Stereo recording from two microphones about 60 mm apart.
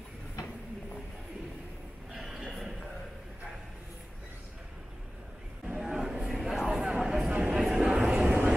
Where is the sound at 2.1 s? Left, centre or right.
Centre.